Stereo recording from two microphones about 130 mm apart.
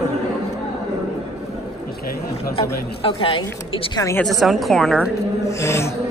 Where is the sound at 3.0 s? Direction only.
40° left (ahead or behind).